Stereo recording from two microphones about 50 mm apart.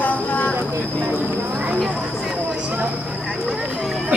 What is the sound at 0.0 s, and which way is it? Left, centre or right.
Vehicle, left.